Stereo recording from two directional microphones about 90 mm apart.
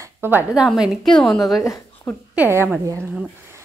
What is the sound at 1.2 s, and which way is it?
Speech, centre (ahead or behind).